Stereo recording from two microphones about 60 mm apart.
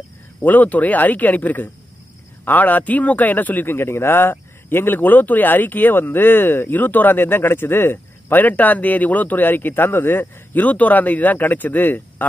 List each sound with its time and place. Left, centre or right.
0.4 s a man's voice: left